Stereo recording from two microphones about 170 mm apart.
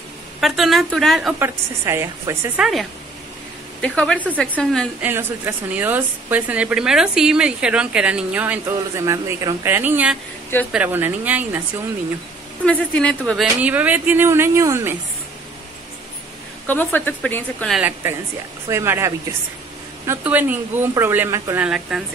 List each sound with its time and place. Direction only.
0.4 s speech: centre (ahead or behind)
1.4 s a woman's voice: 15° right (ahead or behind)
2.6 s speech: centre (ahead or behind)
5.0 s a woman's voice: 10° right (ahead or behind)
12.6 s speech: 5° left (ahead or behind)
13.6 s a woman's voice: 10° right (ahead or behind)
16.6 s a woman's voice: 10° left (ahead or behind)
17.7 s a woman's voice: 10° right (ahead or behind)
21.6 s speech: 5° right (ahead or behind)